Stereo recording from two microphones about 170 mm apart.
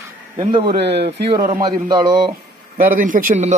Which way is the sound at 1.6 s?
20° right (ahead or behind).